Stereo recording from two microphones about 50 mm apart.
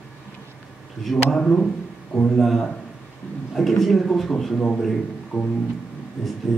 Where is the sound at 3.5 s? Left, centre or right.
Centre.